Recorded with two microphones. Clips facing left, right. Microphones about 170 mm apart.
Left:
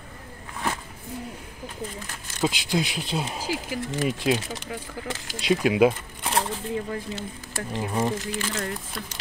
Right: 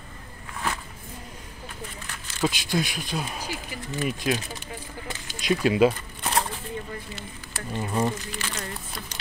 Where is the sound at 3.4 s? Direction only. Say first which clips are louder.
Left 6 dB; 90° left.